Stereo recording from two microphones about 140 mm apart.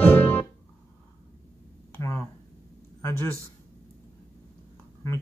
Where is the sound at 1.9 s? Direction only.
20° left (ahead or behind).